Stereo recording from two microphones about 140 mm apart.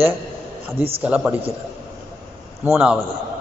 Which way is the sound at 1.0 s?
10° right (ahead or behind).